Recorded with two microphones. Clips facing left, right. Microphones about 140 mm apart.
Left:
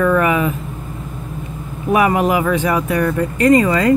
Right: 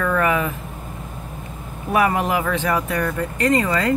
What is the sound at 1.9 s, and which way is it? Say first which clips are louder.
Speech: left 4 dB; 15° left (ahead or behind).